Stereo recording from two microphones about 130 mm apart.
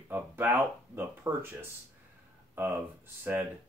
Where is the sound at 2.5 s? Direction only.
15° right (ahead or behind).